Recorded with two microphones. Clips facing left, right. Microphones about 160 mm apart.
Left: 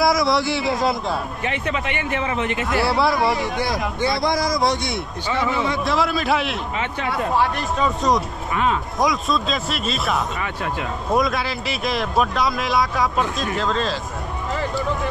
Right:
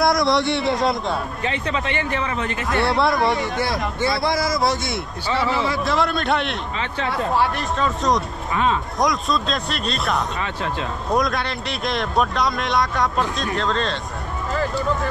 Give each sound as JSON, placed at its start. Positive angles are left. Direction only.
{"t": 0.0, "sound": "a man's voice", "side_deg": 0}
{"t": 2.0, "sound": "a man's voice", "side_deg": 20}
{"t": 2.7, "sound": "speech", "side_deg": 0}
{"t": 5.3, "sound": "a man's voice", "side_deg": 20}
{"t": 5.7, "sound": "speech", "side_deg": 0}
{"t": 10.4, "sound": "speech", "side_deg": -25}
{"t": 11.1, "sound": "speech", "side_deg": 0}